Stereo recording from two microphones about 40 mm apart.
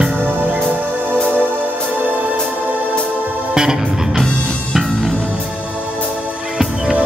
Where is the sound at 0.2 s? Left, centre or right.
Right.